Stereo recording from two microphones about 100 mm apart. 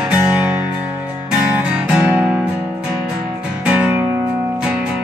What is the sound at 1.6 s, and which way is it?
Music, 10° right (ahead or behind).